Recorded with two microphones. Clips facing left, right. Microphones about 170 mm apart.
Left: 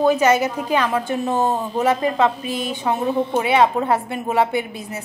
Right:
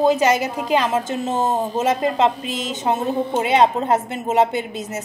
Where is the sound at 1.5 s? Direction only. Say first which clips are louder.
Right 2 dB; 45° right (ahead or behind).